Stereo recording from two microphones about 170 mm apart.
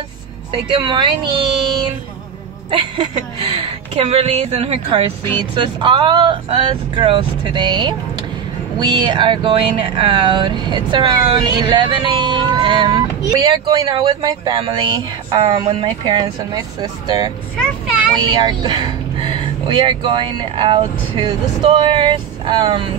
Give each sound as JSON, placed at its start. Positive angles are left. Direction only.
{"t": 0.5, "sound": "speech", "side_deg": -30}
{"t": 18.3, "sound": "speech", "side_deg": -25}